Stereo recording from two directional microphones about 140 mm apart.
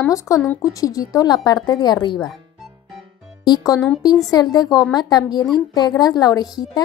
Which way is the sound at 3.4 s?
30° left (ahead or behind).